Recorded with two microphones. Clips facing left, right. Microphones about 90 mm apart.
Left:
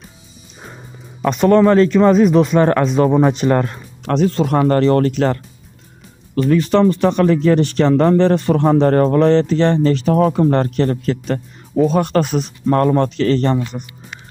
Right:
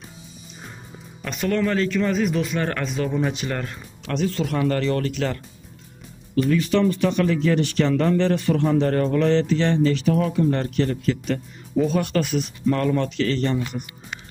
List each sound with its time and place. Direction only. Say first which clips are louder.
1.2 s speech: left 11 dB; 40° left (ahead or behind)
3.1 s speech: left 11 dB; 50° left (ahead or behind)